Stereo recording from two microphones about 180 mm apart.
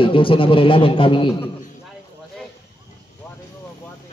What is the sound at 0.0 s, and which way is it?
A man's voice, 30° left (ahead or behind).